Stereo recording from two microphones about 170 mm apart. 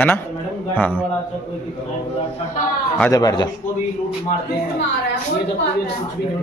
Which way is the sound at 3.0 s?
20° left (ahead or behind).